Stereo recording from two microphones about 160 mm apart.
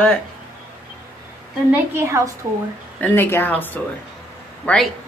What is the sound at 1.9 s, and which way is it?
Speech, 15° right (ahead or behind).